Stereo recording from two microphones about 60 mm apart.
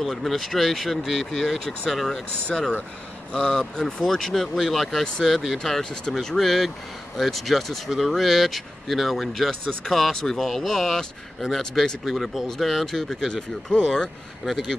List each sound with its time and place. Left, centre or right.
0.0 s speech: centre
3.3 s speech: centre
3.8 s speech: centre